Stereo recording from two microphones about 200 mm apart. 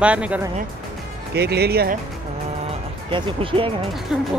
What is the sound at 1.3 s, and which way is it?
Speech, 55° right (ahead or behind).